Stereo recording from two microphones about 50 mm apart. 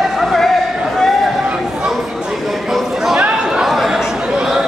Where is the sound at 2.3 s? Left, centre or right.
Centre.